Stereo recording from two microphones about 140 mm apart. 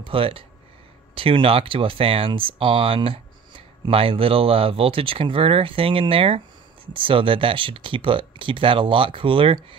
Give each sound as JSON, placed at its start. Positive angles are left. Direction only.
{"t": 0.0, "sound": "speech", "side_deg": -40}